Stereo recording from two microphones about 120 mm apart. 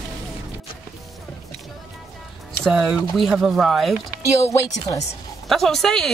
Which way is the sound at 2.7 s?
10° right (ahead or behind).